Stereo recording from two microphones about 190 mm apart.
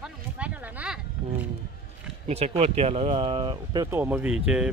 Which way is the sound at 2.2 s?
35° right (ahead or behind).